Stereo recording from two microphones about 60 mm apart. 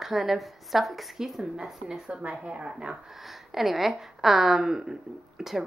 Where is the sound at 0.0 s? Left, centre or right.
Centre.